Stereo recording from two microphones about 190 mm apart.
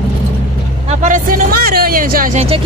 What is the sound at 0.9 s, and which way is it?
Speech, 40° right (ahead or behind).